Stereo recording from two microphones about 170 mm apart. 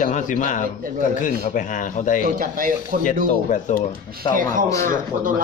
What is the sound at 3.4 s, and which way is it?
Speech, 50° left (ahead or behind).